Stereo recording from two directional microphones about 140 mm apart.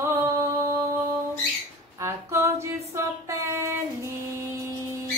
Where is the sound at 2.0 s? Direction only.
20° right (ahead or behind).